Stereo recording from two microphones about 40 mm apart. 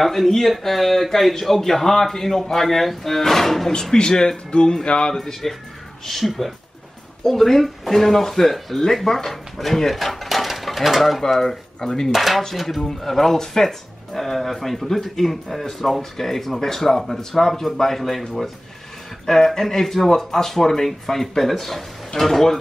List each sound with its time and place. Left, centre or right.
0.0 s speech: centre
3.9 s speech: centre
5.1 s speech: centre
12.1 s speech: centre